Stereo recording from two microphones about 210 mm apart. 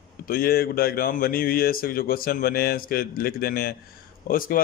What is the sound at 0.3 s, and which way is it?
A man's voice, 45° left (ahead or behind).